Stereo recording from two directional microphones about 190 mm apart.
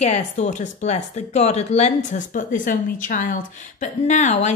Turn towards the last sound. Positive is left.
turn(degrees=40)  # may be behind; listen again after turning